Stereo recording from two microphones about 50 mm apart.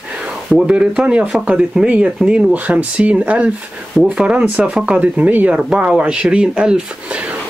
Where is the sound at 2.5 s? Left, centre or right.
Right.